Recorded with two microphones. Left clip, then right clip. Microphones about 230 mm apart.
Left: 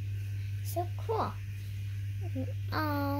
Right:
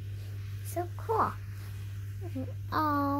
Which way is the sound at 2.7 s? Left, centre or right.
Centre.